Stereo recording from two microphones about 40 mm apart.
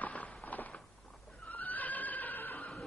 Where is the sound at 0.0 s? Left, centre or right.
Left.